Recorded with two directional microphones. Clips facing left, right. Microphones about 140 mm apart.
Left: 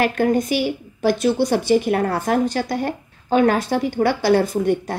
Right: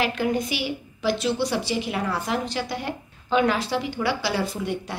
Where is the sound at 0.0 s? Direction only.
50° left (ahead or behind).